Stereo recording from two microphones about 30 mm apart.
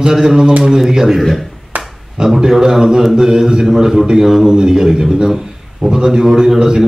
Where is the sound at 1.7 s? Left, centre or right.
Right.